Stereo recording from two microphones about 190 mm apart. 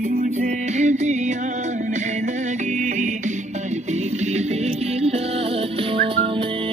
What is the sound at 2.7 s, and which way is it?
Music, 40° right (ahead or behind).